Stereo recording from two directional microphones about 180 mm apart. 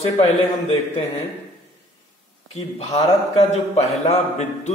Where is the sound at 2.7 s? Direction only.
35° left (ahead or behind).